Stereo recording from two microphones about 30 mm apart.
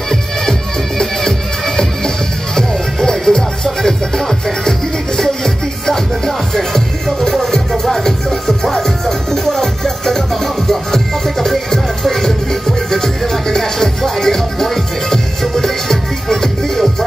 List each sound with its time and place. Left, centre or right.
0.1 s music: centre